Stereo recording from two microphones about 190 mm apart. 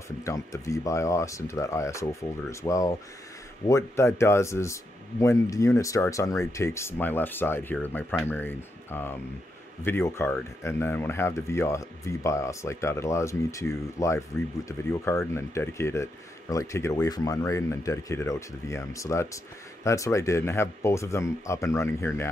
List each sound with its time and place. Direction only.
0.2 s speech: 15° left (ahead or behind)